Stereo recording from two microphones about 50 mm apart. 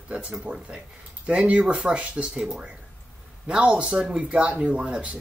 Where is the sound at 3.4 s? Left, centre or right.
Right.